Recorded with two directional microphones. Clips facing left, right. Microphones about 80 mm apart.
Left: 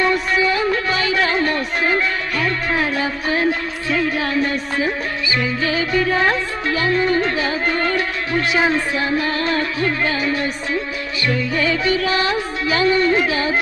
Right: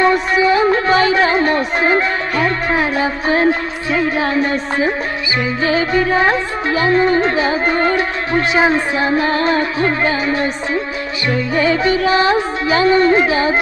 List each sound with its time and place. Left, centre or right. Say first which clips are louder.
0.0 s music: right 4 dB; right